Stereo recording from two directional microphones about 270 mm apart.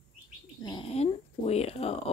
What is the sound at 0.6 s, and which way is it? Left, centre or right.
Speech, centre.